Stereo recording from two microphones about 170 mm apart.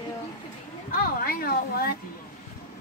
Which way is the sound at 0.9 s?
55° left (ahead or behind).